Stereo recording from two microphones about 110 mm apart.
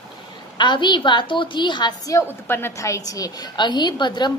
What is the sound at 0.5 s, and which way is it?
A woman's voice, 45° left (ahead or behind).